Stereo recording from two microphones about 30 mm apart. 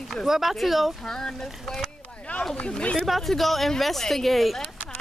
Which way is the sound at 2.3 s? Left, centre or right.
Left.